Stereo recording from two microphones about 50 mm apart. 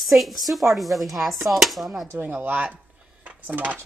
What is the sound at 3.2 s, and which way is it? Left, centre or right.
Dishes, right.